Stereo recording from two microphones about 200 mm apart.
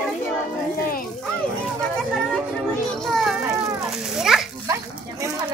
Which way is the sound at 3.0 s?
Centre (ahead or behind).